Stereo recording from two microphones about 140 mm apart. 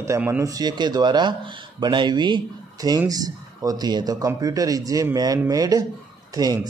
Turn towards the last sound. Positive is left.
turn(degrees=-30)  # may be behind; listen again after turning